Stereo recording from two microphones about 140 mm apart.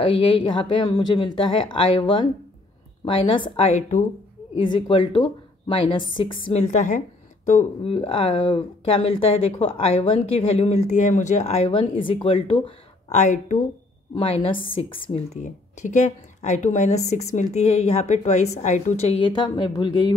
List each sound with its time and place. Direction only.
0.0 s a woman's voice: 35° left (ahead or behind)
6.6 s speech: 60° left (ahead or behind); by 12.7 s 40° left (ahead or behind)
13.1 s speech: 55° left (ahead or behind)
14.1 s a woman's voice: 40° left (ahead or behind)
15.3 s speech: 60° left (ahead or behind); by 20.2 s 30° left (ahead or behind)